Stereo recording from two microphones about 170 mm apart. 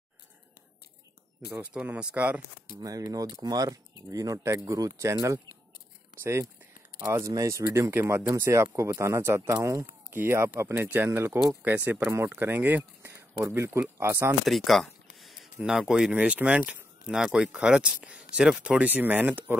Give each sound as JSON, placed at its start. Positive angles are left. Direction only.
{"t": 1.5, "sound": "speech", "side_deg": -10}
{"t": 2.8, "sound": "speech", "side_deg": -20}
{"t": 7.1, "sound": "speech", "side_deg": -15}
{"t": 14.4, "sound": "speech", "side_deg": 0}
{"t": 15.1, "sound": "a sound", "side_deg": 0}
{"t": 15.6, "sound": "speech", "side_deg": -5}